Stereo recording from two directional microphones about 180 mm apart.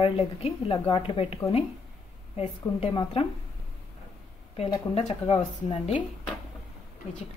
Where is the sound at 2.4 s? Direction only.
35° left (ahead or behind).